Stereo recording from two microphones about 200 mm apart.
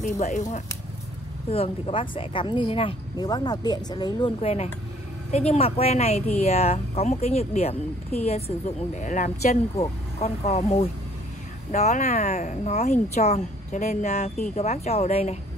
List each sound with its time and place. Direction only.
0.0 s speech: 35° left (ahead or behind); by 4.3 s 20° left (ahead or behind)
4.4 s speech: 30° left (ahead or behind)